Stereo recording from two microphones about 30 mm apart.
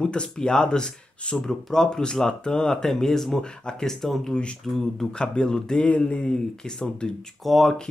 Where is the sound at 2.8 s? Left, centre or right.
Centre.